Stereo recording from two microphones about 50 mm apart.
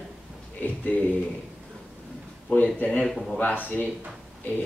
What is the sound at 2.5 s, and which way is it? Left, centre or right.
Speech, left.